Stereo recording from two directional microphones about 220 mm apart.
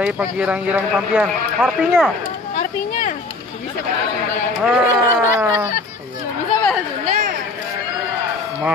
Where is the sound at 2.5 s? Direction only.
35° left (ahead or behind).